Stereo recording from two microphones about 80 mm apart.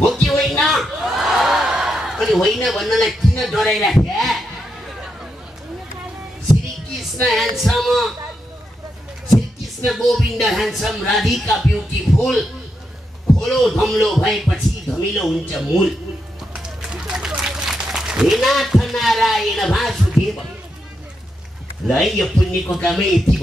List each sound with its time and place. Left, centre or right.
0.0 s a sound: centre
7.2 s speech: centre
9.8 s speech: centre
16.5 s run: centre
21.8 s speech: centre